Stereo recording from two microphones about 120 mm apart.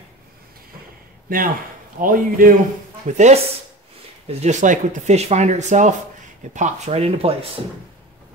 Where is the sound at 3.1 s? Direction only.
80° right; by 7.3 s 55° right (ahead or behind).